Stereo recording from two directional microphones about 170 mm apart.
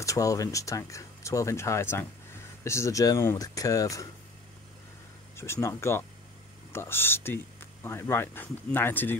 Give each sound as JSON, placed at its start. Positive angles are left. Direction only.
{"t": 0.0, "sound": "speech", "side_deg": 20}
{"t": 5.3, "sound": "speech", "side_deg": 15}